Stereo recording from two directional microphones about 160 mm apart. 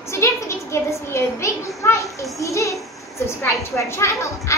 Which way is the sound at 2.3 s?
20° left (ahead or behind).